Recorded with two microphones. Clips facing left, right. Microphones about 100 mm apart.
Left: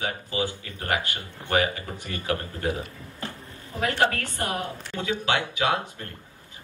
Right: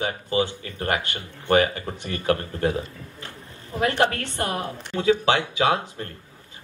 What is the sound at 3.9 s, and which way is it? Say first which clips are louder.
Speech: right 2 dB; 20° right (ahead or behind).